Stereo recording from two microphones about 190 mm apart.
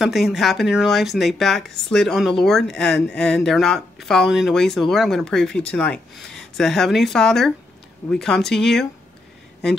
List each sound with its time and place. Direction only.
0.0 s speech: centre (ahead or behind)